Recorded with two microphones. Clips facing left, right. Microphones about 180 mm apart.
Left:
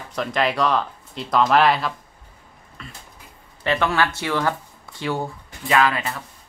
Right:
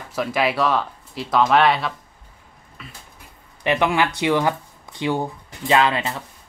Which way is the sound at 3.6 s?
15° right (ahead or behind).